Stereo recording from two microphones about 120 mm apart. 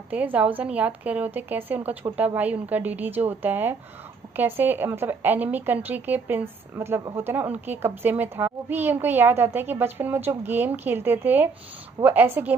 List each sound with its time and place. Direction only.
0.1 s a child's voice: 10° right (ahead or behind)